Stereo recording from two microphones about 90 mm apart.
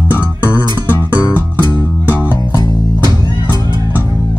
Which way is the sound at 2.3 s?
50° left (ahead or behind).